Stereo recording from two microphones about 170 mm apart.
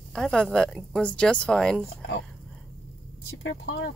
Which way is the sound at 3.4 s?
90° left.